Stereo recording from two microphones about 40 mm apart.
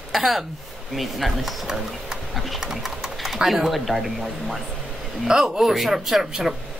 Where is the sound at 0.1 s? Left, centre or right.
Centre.